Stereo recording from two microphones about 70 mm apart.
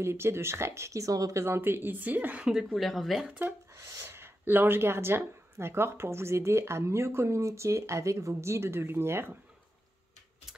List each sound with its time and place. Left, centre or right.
0.0 s speech: right
1.4 s a woman's voice: right
2.4 s speech: centre
3.3 s a woman's voice: right
3.7 s speech: right